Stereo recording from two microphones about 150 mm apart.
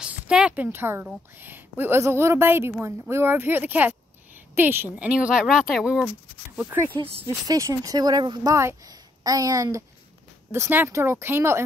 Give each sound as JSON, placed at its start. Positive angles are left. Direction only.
{"t": 0.0, "sound": "a woman's voice", "side_deg": -5}
{"t": 7.4, "sound": "a woman's voice", "side_deg": -20}